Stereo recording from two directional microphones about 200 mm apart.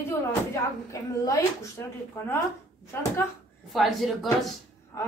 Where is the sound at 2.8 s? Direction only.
15° left (ahead or behind).